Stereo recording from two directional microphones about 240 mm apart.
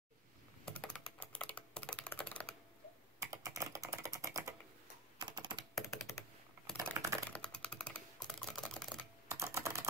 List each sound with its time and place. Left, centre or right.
0.7 s typing: centre
3.2 s typing: centre
5.8 s computer keyboard: centre
6.9 s typing: centre
7.2 s typing: centre
9.3 s typing: centre